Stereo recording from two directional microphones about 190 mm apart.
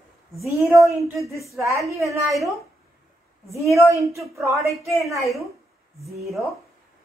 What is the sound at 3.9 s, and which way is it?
Speech, centre (ahead or behind).